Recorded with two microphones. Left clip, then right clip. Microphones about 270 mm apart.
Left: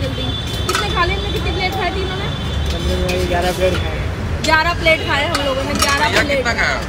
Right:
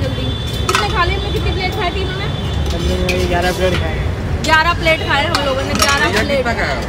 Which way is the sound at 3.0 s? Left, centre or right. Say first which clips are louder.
Right 2 dB; centre.